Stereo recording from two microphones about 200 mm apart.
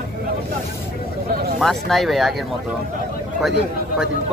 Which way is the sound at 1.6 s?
Centre (ahead or behind).